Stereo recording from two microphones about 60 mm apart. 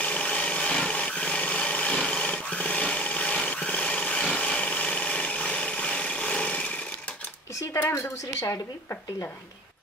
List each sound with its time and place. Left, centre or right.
0.0 s wood: left
7.7 s a woman's voice: left